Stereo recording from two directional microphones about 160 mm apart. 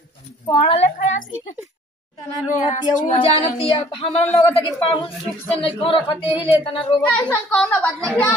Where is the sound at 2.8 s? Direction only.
55° left (ahead or behind).